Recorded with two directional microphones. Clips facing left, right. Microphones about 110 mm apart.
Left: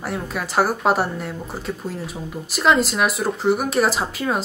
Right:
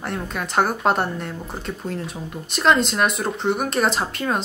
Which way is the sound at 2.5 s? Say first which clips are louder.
Even; centre (ahead or behind).